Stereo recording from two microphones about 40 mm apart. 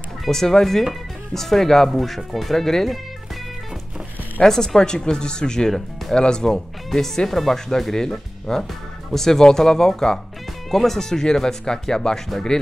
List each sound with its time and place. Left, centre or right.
0.3 s speech: centre
4.4 s speech: centre
6.9 s speech: centre